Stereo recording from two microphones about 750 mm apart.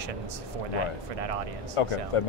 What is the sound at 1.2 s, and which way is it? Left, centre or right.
Speech, right.